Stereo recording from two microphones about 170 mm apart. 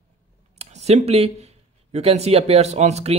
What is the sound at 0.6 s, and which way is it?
Speech, 40° right (ahead or behind).